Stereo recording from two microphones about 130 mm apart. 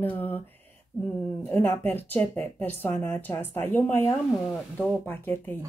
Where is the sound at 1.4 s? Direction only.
15° left (ahead or behind).